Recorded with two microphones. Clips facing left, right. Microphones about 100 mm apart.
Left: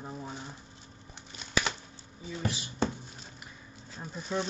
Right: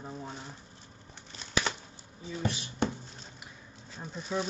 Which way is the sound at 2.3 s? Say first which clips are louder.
Right 1 dB; centre (ahead or behind).